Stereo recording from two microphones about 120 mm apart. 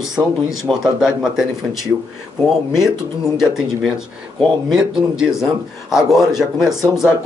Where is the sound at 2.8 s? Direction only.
5° right (ahead or behind).